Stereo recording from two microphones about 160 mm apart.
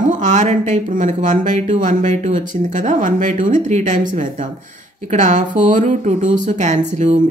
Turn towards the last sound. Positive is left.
turn(degrees=-50)  # may be behind; listen again after turning